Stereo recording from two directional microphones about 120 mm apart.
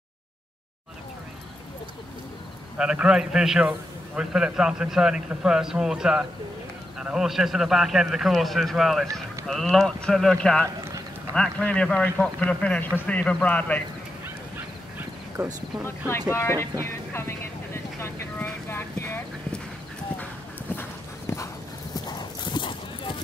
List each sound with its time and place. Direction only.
2.8 s a man's voice: 5° right (ahead or behind); by 13.8 s 10° left (ahead or behind)
15.0 s dog: 15° right (ahead or behind)
15.8 s speech: 20° left (ahead or behind)
17.7 s boat: 20° left (ahead or behind)
21.3 s clip-clop: 25° left (ahead or behind)
21.9 s clip-clop: 35° left (ahead or behind)